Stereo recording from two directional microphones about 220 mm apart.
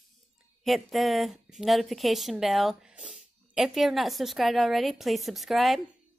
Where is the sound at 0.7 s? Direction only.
Centre (ahead or behind).